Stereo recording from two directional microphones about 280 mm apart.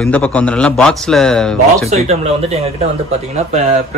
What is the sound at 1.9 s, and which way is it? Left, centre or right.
Speech, right.